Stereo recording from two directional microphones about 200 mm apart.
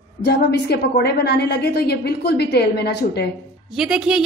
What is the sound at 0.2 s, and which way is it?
A woman's voice, 55° left (ahead or behind).